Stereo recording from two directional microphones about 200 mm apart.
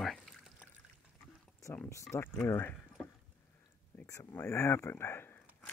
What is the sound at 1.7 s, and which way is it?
Speech, 5° left (ahead or behind).